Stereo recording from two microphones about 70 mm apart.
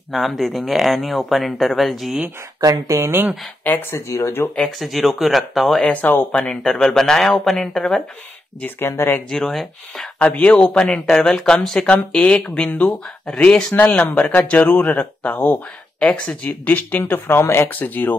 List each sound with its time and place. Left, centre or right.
0.1 s speech: centre
2.6 s speech: right
3.6 s speech: left
4.6 s speech: centre
5.9 s speech: left
6.3 s speech: centre
8.7 s speech: left
9.3 s speech: centre
10.1 s speech: left
13.7 s speech: left